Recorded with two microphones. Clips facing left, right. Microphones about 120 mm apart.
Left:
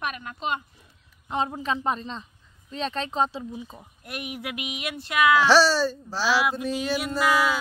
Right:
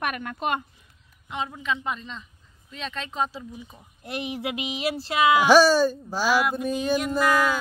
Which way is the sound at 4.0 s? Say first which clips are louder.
Right 5 dB; 25° right (ahead or behind).